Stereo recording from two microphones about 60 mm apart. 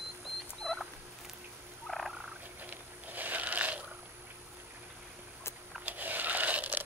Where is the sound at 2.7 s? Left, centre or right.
Right.